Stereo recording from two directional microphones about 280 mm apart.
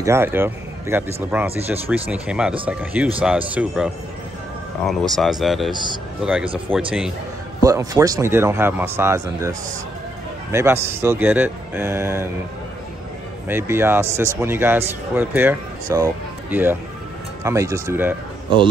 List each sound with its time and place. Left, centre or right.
0.0 s a man's voice: centre
5.7 s a man's voice: centre
6.2 s speech: centre
7.6 s a man's voice: centre
13.5 s a man's voice: centre